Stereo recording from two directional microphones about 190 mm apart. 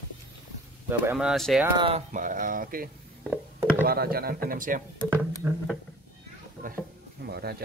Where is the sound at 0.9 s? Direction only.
10° right (ahead or behind).